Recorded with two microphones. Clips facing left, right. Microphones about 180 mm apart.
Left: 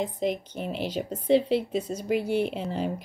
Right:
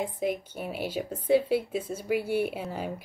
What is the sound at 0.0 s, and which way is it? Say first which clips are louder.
A woman's voice: left 2 dB; 10° right (ahead or behind).